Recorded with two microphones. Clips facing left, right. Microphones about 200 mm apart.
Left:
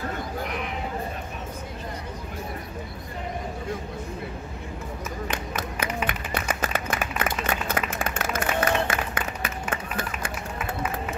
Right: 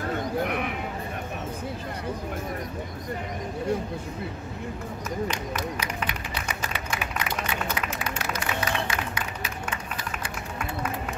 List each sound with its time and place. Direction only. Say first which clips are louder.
0.4 s speech: right 4 dB; 60° right (ahead or behind)
6.0 s a sound: left 4 dB; 50° left (ahead or behind)
8.0 s applause: left 3 dB; 50° left (ahead or behind)